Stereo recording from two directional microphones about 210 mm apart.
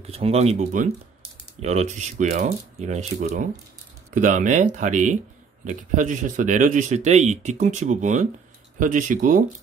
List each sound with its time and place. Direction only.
0.0 s speech: 30° right (ahead or behind)